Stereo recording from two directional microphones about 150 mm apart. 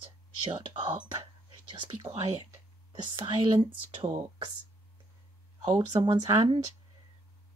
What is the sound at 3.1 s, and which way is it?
Speech, 30° right (ahead or behind).